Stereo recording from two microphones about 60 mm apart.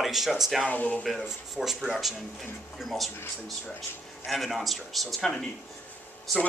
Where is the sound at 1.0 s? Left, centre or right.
Centre.